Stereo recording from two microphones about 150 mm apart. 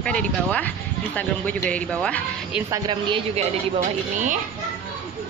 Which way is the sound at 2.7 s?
30° right (ahead or behind).